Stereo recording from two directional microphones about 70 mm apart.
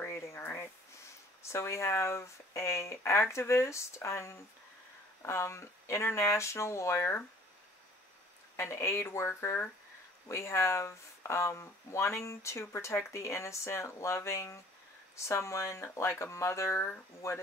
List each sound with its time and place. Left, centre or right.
0.0 s a sound: left
1.4 s speech: left
8.5 s speech: left